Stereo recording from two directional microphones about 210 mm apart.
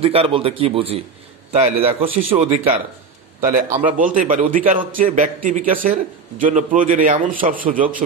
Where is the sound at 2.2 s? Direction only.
40° right (ahead or behind).